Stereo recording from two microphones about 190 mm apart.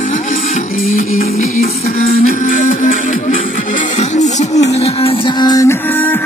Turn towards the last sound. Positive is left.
turn(degrees=15)  # may be behind; listen again after turning